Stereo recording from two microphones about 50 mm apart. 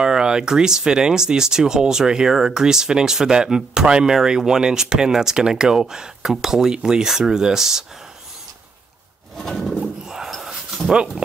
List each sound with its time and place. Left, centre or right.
0.0 s speech: centre
9.4 s bird: centre
9.8 s dog: centre
10.9 s speech: centre